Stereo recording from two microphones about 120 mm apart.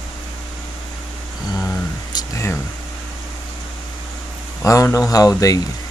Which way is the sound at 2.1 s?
25° left (ahead or behind).